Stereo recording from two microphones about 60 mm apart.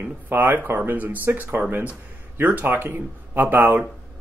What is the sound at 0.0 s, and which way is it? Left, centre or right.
Speech, right.